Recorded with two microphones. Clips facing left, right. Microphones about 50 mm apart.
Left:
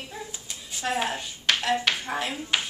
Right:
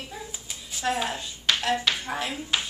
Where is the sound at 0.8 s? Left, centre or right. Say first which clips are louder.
Right 1 dB; centre.